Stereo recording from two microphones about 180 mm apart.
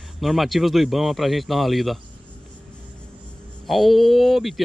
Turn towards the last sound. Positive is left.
turn(degrees=0)  # may be behind; listen again after turning